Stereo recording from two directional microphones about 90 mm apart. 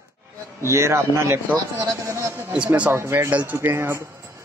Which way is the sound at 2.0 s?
35° right (ahead or behind).